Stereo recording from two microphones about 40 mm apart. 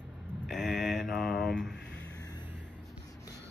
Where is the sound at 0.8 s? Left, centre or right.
Centre.